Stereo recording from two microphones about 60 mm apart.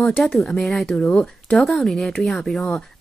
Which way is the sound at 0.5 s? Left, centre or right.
Centre.